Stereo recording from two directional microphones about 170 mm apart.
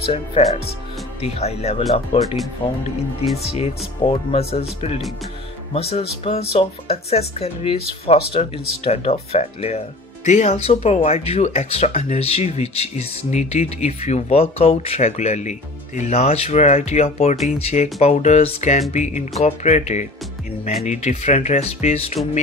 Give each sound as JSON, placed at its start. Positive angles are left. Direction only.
{"t": 0.1, "sound": "speech", "side_deg": 35}
{"t": 3.5, "sound": "speech", "side_deg": 35}